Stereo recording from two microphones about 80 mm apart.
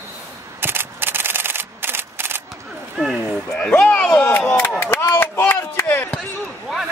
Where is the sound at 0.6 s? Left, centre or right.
Right.